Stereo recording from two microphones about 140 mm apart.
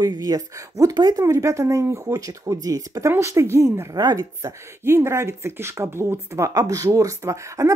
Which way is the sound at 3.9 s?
25° right (ahead or behind).